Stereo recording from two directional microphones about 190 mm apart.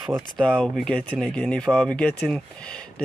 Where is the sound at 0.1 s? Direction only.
5° left (ahead or behind).